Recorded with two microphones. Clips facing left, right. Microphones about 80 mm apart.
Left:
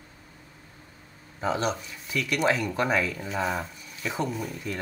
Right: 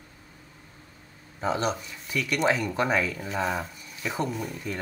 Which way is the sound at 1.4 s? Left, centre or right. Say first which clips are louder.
Even; centre.